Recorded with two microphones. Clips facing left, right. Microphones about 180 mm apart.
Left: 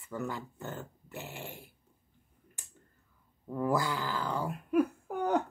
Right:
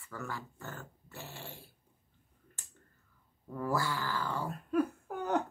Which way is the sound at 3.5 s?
15° left (ahead or behind).